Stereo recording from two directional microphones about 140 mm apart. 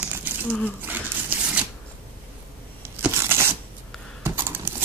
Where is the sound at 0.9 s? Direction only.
10° right (ahead or behind).